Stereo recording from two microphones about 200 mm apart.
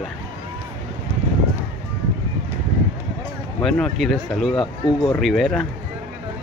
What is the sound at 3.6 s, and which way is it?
Speech, 5° left (ahead or behind).